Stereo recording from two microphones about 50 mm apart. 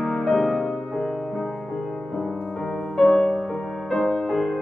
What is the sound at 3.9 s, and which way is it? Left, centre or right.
Music, centre.